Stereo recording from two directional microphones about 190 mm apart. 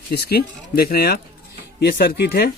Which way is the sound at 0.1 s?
60° left (ahead or behind).